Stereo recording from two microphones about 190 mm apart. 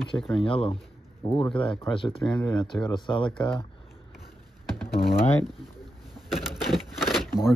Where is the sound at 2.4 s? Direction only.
20° left (ahead or behind).